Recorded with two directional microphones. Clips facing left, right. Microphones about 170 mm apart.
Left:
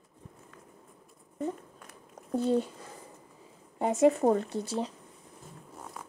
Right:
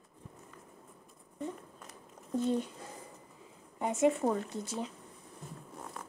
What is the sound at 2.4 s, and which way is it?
Speech, 35° left (ahead or behind).